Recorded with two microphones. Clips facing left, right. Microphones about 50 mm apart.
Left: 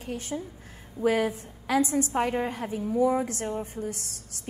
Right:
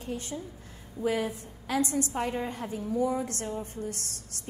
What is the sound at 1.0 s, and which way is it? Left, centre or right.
Speech, left.